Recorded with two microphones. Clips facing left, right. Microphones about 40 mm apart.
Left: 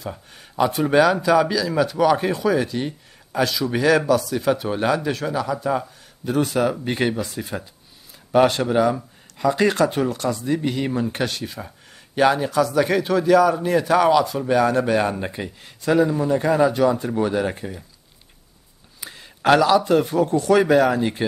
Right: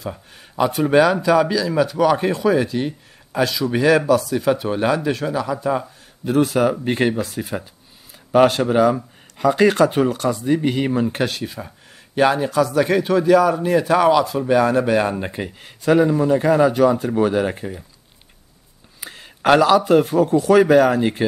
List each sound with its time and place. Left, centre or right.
0.0 s speech: centre
8.9 s speech: right
11.1 s speech: centre
15.4 s speech: right
18.9 s a sound: right
20.2 s speech: centre